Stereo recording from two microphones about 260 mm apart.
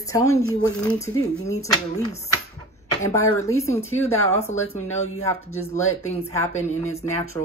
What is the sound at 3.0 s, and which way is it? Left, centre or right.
Speech, centre.